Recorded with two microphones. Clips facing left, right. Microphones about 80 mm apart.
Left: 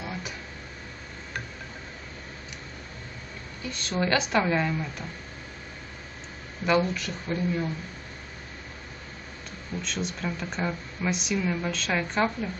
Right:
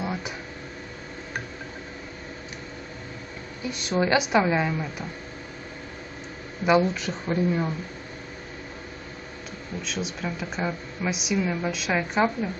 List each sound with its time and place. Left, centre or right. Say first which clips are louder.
0.0 s a sound: right 5 dB; right
3.6 s speech: right 4 dB; centre
6.6 s speech: right 3 dB; centre
9.8 s speech: right 1 dB; centre